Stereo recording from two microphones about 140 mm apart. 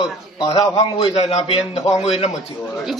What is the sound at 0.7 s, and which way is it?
A man's voice, 45° left (ahead or behind).